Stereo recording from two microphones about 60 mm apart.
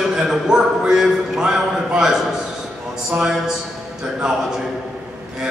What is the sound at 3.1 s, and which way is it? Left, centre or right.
Speech, right.